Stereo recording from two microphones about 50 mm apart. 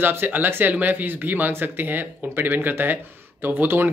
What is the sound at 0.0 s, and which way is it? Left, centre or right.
Speech, right.